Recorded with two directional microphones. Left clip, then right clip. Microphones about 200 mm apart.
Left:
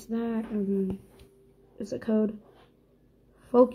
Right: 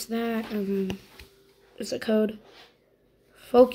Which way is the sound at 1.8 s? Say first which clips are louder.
Right 3 dB; centre (ahead or behind).